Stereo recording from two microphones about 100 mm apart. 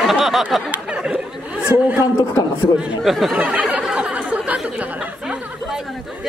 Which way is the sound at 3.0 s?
Centre (ahead or behind).